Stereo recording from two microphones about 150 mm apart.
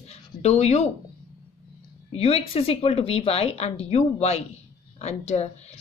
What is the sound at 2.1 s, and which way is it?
A woman's voice, 40° left (ahead or behind).